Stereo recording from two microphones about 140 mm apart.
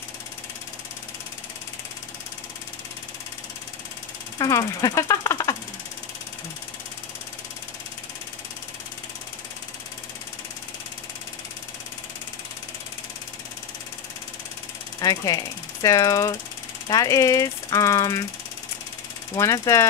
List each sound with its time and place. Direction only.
4.4 s speech: 25° left (ahead or behind)
15.0 s speech: 25° left (ahead or behind)
16.8 s ratchet: 25° left (ahead or behind)
19.3 s ratchet: 25° left (ahead or behind)